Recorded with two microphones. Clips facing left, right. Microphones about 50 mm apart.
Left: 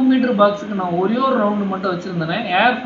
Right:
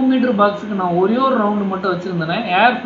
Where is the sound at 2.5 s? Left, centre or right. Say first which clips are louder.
Right 2 dB; centre.